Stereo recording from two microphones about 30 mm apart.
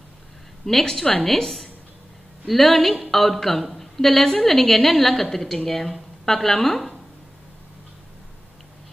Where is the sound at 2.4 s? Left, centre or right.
Centre.